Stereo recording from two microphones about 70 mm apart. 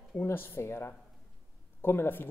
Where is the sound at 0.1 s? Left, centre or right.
Left.